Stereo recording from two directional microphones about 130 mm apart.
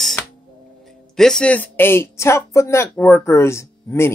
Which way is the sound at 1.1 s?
5° left (ahead or behind).